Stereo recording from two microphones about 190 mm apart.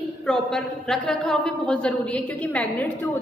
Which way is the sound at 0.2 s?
5° left (ahead or behind).